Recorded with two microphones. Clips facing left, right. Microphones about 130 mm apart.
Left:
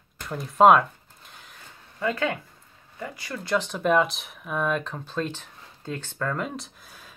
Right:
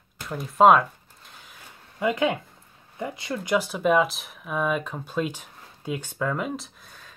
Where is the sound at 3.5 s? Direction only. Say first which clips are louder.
Right 1 dB; 5° right (ahead or behind).